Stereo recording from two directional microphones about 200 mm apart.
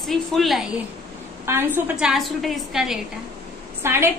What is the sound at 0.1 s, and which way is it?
A woman's voice, centre (ahead or behind).